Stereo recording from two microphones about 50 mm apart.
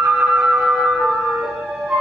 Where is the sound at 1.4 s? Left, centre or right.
Centre.